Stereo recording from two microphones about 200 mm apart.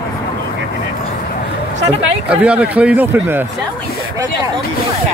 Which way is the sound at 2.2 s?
5° right (ahead or behind).